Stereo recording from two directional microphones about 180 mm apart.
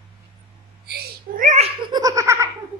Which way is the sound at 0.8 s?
55° right (ahead or behind).